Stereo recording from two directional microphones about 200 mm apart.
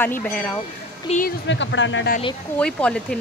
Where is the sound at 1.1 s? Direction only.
40° left (ahead or behind).